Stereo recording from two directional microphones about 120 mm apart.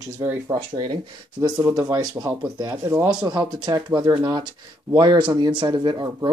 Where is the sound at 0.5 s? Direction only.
35° right (ahead or behind).